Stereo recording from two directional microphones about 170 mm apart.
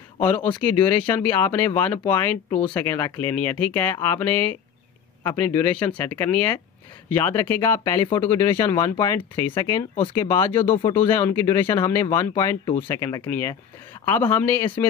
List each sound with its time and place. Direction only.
0.6 s speech: 10° left (ahead or behind)